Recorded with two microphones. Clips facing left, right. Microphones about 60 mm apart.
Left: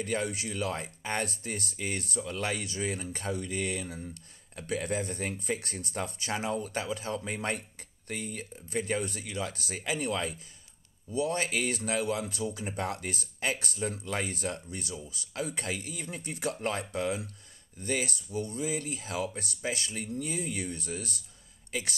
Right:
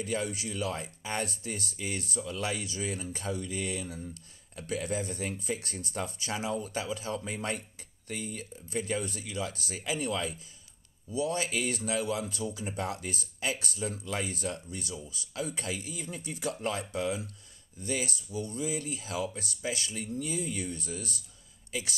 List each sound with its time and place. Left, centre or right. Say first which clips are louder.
0.0 s speech: left 1 dB; left